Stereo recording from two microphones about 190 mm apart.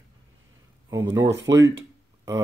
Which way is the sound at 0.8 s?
15° right (ahead or behind).